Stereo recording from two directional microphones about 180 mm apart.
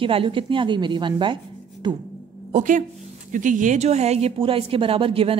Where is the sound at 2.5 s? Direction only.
45° right (ahead or behind).